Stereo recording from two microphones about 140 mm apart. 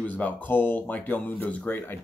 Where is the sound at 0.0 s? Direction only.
10° left (ahead or behind).